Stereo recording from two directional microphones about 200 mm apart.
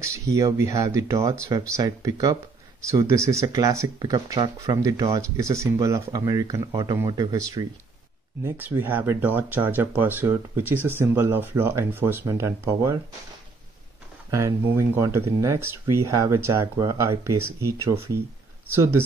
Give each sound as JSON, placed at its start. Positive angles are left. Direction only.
{"t": 0.0, "sound": "speech", "side_deg": -15}
{"t": 14.3, "sound": "speech", "side_deg": -15}